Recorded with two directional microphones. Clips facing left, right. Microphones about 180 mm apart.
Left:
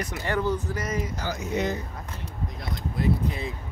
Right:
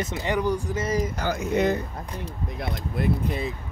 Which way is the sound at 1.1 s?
60° right (ahead or behind).